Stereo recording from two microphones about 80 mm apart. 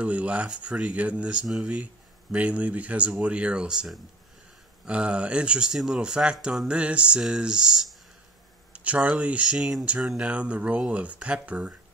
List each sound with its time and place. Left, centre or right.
0.0 s speech: centre
8.7 s a sound: centre
9.0 s speech: centre